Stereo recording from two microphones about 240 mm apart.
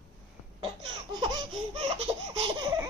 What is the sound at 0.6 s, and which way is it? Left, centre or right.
Laughter, centre.